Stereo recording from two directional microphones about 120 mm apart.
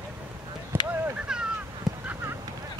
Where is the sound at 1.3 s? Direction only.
5° right (ahead or behind).